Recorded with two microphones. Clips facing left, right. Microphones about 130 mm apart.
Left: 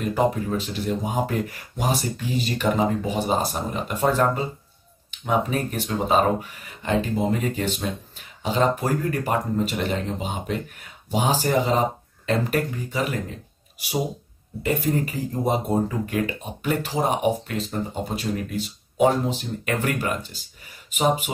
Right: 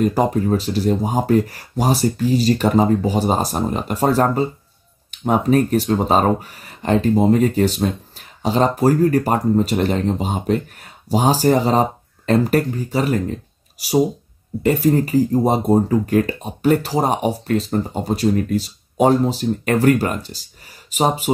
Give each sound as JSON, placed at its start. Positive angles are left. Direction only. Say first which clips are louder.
{"t": 0.0, "sound": "speech", "louder": "right 5 dB", "side_deg": -35}